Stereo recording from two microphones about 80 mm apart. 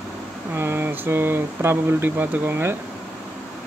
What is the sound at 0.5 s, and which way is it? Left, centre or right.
Speech, right.